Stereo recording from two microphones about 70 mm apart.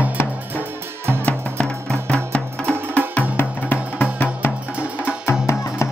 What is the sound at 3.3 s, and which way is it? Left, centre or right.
Music, left.